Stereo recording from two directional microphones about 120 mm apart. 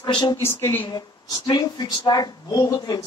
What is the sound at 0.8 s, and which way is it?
Speech, 35° left (ahead or behind).